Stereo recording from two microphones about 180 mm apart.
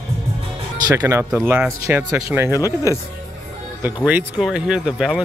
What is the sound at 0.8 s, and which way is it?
Speech, 15° right (ahead or behind).